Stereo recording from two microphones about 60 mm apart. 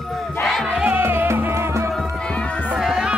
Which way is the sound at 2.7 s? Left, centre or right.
Centre.